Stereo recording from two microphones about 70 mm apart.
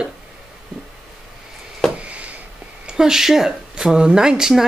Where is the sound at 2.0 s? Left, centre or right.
Centre.